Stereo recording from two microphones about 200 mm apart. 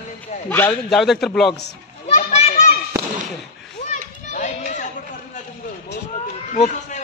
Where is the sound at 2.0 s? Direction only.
30° left (ahead or behind).